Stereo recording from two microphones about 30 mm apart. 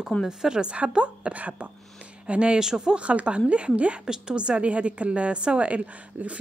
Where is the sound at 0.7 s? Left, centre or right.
Right.